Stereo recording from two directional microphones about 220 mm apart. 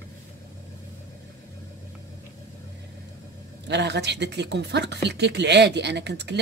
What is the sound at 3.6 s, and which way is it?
A woman's voice, 50° right (ahead or behind).